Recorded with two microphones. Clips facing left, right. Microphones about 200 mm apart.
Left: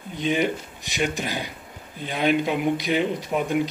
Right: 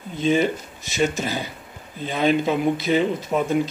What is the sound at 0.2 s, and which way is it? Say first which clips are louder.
Speech: right 3 dB; 15° left (ahead or behind).